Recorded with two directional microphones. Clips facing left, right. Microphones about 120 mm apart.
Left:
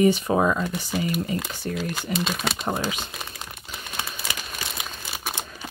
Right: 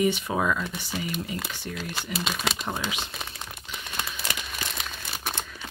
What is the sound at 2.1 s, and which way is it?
Speech, centre (ahead or behind).